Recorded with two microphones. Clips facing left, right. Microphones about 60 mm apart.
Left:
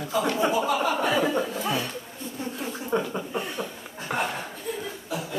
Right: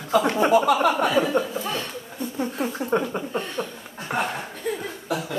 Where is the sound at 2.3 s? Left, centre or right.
Right.